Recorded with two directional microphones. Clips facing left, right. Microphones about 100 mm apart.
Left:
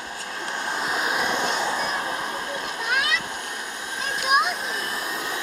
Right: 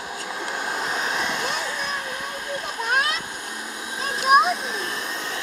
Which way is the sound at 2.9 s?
40° right (ahead or behind).